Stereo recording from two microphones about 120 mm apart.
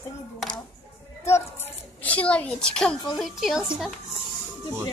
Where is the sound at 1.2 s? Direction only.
20° left (ahead or behind); by 3.7 s centre (ahead or behind).